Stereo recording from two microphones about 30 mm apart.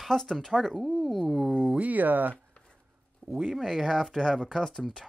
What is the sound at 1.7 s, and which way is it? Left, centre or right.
Speech, right.